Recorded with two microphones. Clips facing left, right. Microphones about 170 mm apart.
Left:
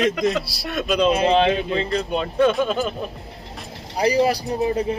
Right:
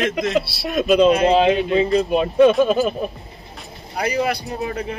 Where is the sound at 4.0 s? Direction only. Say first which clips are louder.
Left 3 dB; 35° left (ahead or behind).